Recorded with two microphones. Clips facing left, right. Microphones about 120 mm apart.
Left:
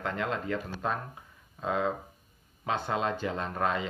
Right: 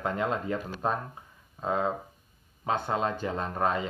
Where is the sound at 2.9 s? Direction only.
35° right (ahead or behind).